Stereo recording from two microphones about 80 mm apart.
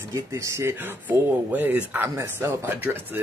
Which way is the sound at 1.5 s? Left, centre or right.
Centre.